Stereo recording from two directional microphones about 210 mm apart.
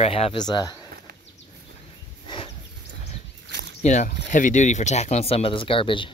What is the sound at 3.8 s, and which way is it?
Speech, 35° left (ahead or behind).